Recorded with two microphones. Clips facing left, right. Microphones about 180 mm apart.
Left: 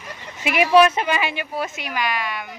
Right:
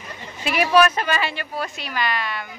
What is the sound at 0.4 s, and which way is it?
Speech, 20° left (ahead or behind).